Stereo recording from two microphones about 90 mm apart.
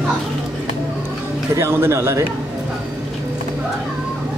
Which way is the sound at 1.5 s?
25° right (ahead or behind).